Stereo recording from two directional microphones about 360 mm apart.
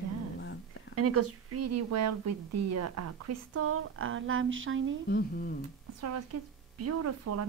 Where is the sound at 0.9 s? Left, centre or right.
Right.